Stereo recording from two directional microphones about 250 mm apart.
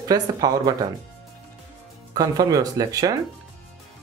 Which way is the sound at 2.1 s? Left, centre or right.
Centre.